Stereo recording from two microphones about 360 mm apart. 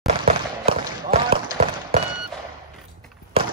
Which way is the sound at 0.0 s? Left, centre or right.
Centre.